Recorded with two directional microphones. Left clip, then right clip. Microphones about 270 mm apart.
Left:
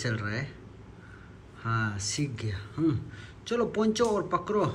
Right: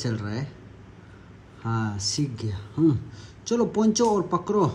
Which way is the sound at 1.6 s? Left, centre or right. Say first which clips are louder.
Right 1 dB; centre.